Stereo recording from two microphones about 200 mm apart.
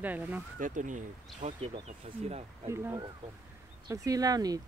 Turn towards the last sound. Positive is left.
turn(degrees=-20)  # may be behind; listen again after turning